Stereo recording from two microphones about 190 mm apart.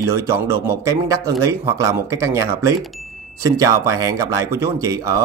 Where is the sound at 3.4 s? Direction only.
15° right (ahead or behind).